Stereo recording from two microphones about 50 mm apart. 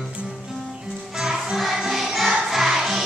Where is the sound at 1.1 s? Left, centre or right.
Centre.